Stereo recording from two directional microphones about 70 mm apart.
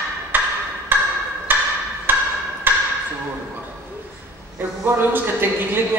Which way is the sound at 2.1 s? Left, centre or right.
Right.